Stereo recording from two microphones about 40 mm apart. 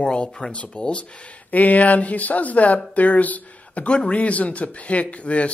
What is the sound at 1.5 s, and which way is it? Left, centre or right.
Speech, left.